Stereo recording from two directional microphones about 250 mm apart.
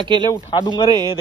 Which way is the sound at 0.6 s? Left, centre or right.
Centre.